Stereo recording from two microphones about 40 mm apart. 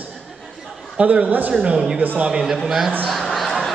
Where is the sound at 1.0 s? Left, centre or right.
Right.